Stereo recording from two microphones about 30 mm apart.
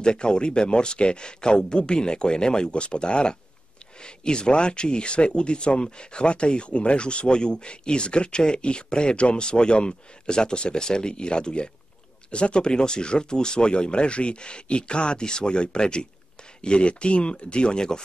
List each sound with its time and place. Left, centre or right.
0.0 s speech: left